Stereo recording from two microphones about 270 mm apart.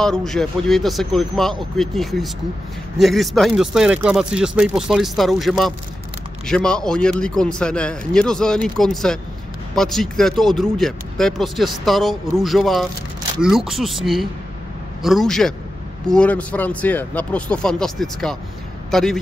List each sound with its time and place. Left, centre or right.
0.0 s speech: centre